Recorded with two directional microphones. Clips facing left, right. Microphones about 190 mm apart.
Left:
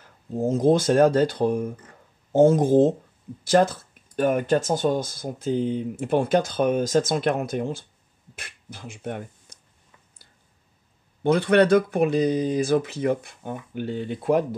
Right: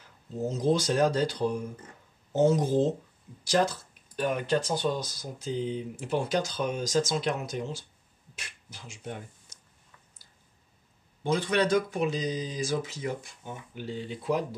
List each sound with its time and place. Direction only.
0.4 s speech: 50° left (ahead or behind)
11.2 s speech: 60° left (ahead or behind)